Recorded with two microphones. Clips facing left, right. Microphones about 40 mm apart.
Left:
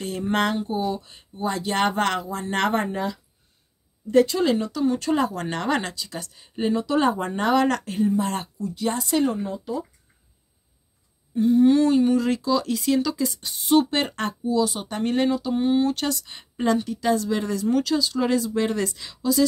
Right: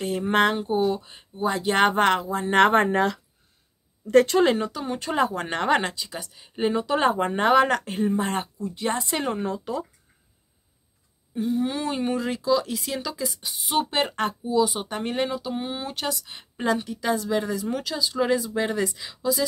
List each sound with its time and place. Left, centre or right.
0.0 s speech: centre
1.3 s speech: centre; by 2.8 s right
2.8 s speech: right
4.1 s speech: right
4.6 s speech: right
6.7 s speech: right
8.0 s speech: right
9.4 s speech: right
11.3 s speech: centre
11.9 s speech: right